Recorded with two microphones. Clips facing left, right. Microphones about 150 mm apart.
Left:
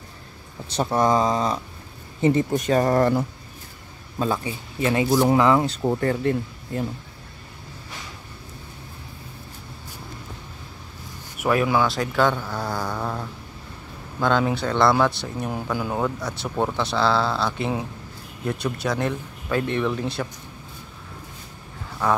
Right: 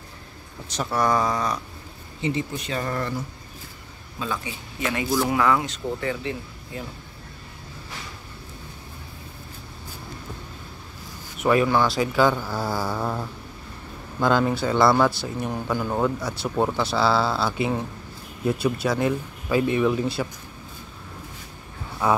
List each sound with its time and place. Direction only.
0.7 s speech: 25° left (ahead or behind)
2.2 s speech: 45° left (ahead or behind)
4.2 s speech: 35° left (ahead or behind)
5.9 s speech: 50° left (ahead or behind)
11.3 s speech: 5° left (ahead or behind)
22.0 s speech: 10° right (ahead or behind)